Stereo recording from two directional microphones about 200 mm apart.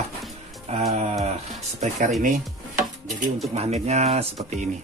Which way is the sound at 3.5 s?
35° right (ahead or behind).